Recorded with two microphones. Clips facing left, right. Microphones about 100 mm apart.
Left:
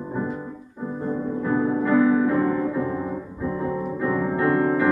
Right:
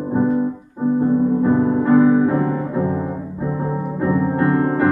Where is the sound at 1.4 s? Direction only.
40° right (ahead or behind).